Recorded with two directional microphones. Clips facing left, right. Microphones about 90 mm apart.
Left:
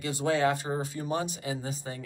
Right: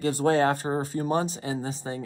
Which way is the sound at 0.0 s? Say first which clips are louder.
Right 4 dB; 45° right (ahead or behind).